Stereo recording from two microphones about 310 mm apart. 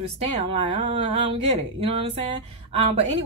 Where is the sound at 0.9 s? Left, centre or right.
Centre.